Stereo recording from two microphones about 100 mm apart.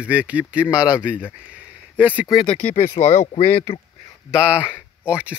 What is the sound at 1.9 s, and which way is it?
Speech, 15° right (ahead or behind).